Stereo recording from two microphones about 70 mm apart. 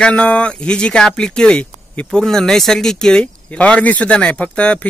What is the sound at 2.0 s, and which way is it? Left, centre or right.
Speech, centre.